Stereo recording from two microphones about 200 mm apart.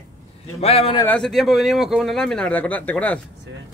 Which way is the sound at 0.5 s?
30° left (ahead or behind).